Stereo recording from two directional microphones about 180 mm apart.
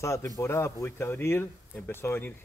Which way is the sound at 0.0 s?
15° left (ahead or behind).